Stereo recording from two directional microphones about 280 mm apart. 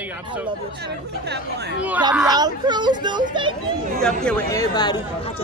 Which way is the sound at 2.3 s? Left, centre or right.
Centre.